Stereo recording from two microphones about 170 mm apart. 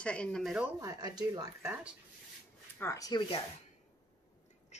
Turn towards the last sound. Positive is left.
turn(degrees=45)  # may be behind; listen again after turning